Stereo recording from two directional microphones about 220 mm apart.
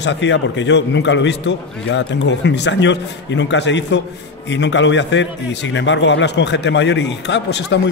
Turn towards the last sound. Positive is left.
turn(degrees=50)  # may be behind; listen again after turning